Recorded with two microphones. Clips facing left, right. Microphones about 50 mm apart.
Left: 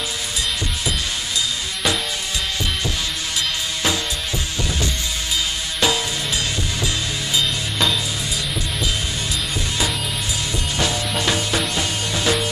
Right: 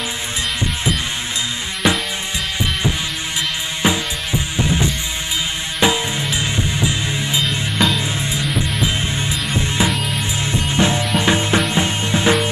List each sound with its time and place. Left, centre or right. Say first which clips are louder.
3.8 s music: right 5 dB; right
7.8 s music: right 3 dB; centre
9.5 s music: right 7 dB; right